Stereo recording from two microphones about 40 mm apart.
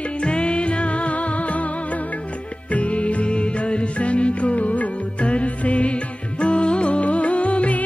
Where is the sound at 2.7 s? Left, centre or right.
Left.